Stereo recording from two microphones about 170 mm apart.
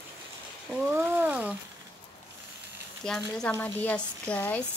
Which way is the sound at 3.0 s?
5° left (ahead or behind).